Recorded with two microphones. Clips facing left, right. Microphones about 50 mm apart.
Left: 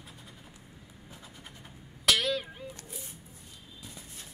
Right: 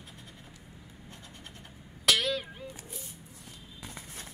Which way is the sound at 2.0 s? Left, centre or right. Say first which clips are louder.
Even; centre.